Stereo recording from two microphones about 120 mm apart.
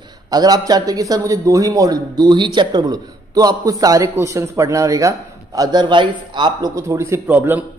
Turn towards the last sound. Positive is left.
turn(degrees=-15)  # may be behind; listen again after turning